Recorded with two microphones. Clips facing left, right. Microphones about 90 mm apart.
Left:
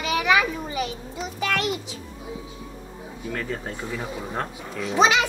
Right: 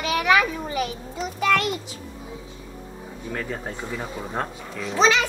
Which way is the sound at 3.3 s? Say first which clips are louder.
Even; 15° right (ahead or behind).